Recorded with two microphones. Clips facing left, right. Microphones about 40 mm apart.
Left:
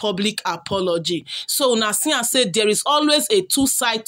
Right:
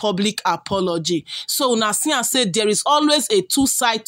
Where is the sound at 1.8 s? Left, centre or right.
Centre.